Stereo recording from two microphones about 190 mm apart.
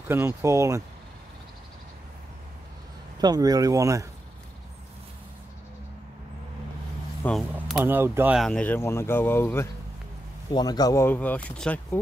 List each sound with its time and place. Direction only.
0.1 s speech: 15° right (ahead or behind)
3.2 s speech: 20° right (ahead or behind)
7.5 s a sound: centre (ahead or behind)
7.8 s speech: 10° right (ahead or behind)
8.4 s speech: 5° left (ahead or behind)